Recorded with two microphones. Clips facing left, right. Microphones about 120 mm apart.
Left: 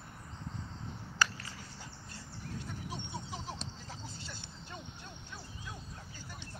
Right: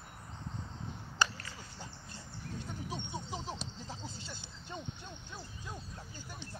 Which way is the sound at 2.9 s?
20° right (ahead or behind).